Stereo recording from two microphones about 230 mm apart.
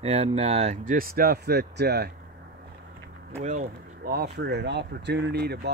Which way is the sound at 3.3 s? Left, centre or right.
Right.